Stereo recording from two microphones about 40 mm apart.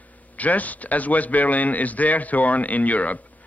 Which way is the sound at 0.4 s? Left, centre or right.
Left.